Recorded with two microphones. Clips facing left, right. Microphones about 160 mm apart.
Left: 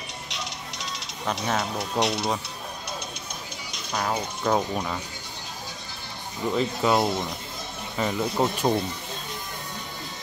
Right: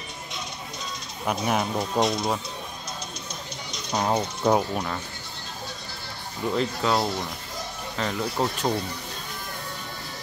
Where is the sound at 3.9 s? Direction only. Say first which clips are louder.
Right 3 dB; 25° right (ahead or behind).